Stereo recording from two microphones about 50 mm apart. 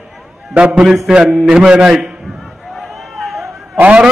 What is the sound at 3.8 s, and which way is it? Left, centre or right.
Speech, right.